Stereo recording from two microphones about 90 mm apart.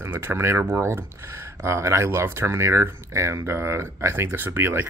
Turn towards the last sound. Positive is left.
turn(degrees=-25)  # may be behind; listen again after turning